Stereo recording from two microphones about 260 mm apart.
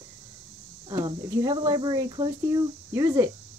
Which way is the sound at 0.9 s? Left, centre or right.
Centre.